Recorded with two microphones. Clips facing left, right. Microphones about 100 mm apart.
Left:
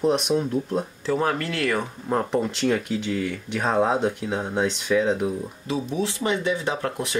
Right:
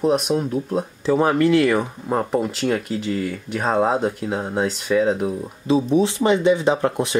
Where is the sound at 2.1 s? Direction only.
5° right (ahead or behind).